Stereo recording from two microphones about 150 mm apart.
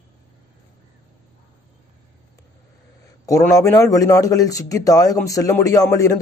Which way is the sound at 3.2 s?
20° left (ahead or behind).